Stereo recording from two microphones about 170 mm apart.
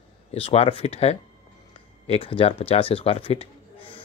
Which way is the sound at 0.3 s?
35° left (ahead or behind).